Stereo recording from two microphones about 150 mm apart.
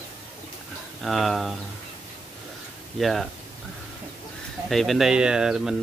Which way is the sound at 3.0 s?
Centre (ahead or behind).